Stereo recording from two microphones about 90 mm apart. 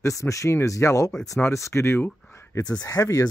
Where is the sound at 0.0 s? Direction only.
35° left (ahead or behind).